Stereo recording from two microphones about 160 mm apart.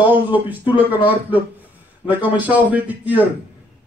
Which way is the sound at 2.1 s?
10° right (ahead or behind).